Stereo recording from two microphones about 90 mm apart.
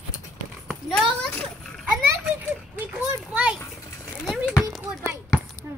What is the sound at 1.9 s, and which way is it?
A child's voice, 15° right (ahead or behind).